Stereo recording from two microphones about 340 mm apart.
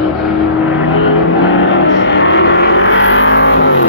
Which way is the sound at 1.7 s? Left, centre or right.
Left.